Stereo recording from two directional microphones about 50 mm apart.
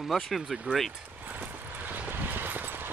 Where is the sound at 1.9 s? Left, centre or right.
Right.